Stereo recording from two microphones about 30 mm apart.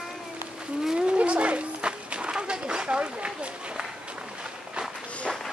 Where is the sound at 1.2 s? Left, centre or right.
Right.